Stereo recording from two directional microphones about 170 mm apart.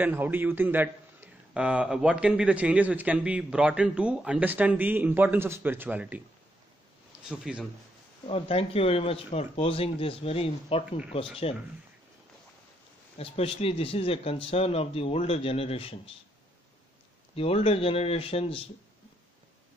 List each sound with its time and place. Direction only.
0.0 s a man's voice: 10° right (ahead or behind)
7.2 s speech: 5° right (ahead or behind)
8.3 s a man's voice: 35° left (ahead or behind)
13.2 s a man's voice: 35° left (ahead or behind)
17.4 s a man's voice: 35° left (ahead or behind)